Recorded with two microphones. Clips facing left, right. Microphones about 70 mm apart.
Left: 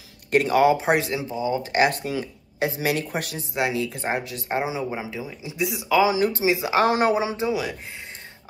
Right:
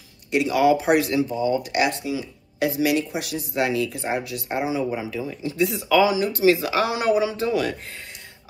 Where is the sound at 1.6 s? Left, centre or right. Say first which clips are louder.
Left 2 dB; left.